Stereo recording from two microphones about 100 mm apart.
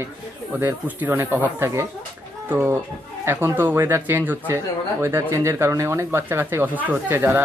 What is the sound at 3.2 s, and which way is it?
Speech, 20° right (ahead or behind).